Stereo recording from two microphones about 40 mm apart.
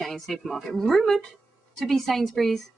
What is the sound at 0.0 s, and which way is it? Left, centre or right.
Speech, centre.